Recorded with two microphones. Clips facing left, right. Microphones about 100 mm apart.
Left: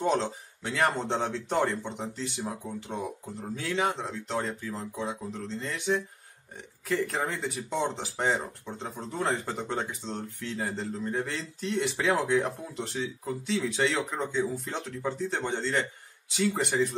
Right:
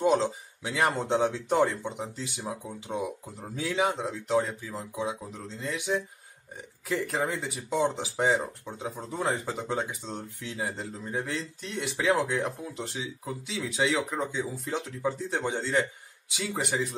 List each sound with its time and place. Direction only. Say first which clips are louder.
0.0 s speech: right 3 dB; 5° right (ahead or behind)